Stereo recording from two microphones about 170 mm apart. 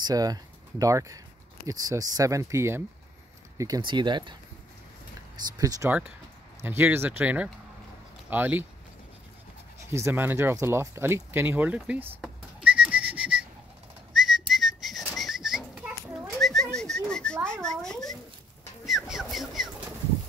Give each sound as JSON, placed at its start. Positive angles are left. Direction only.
{"t": 0.0, "sound": "speech", "side_deg": -20}
{"t": 5.6, "sound": "speech", "side_deg": -20}
{"t": 9.8, "sound": "speech", "side_deg": -15}
{"t": 12.2, "sound": "whistling", "side_deg": -5}
{"t": 16.7, "sound": "a sound", "side_deg": 5}
{"t": 18.9, "sound": "bird", "side_deg": 0}